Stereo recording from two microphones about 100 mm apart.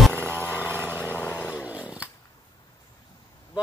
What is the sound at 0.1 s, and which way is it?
Vehicle, 20° right (ahead or behind).